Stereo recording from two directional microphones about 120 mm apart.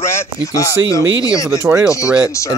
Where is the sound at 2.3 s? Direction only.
25° left (ahead or behind).